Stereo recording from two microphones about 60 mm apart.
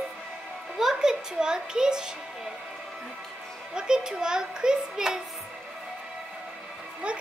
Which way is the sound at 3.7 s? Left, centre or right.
Centre.